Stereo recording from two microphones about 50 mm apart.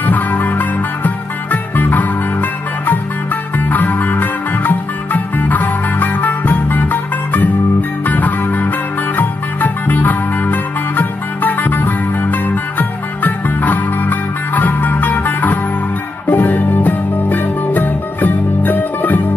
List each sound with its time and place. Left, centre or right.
0.0 s music: left
3.5 s music: left